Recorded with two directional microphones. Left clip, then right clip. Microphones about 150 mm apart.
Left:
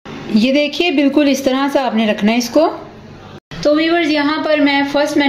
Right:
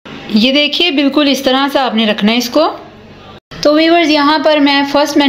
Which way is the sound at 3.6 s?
25° right (ahead or behind).